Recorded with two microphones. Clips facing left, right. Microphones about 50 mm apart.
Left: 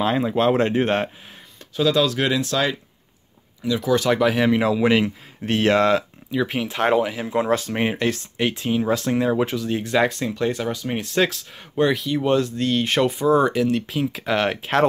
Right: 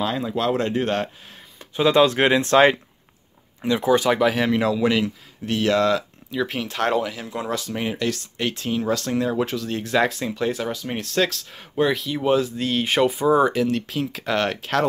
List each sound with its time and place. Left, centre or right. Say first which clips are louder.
0.0 s speech: left 4 dB; left
1.8 s speech: right 3 dB; right
3.9 s speech: even; centre
4.2 s speech: left 1 dB; centre
4.7 s speech: left 2 dB; left
6.3 s speech: left 2 dB; centre
7.4 s speech: left 5 dB; left
8.4 s speech: left 3 dB; centre
9.5 s speech: left 1 dB; centre